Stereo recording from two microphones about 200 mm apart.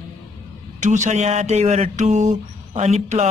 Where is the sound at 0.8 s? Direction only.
35° right (ahead or behind).